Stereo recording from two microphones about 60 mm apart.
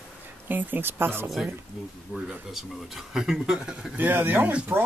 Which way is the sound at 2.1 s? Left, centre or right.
Centre.